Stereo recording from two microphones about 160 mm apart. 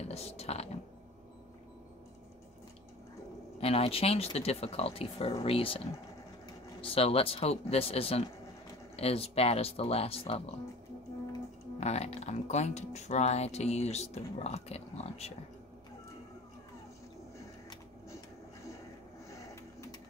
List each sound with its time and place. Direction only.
0.1 s speech: 40° left (ahead or behind)
3.5 s speech: 40° left (ahead or behind)
6.8 s speech: 35° left (ahead or behind)
11.8 s speech: 45° left (ahead or behind)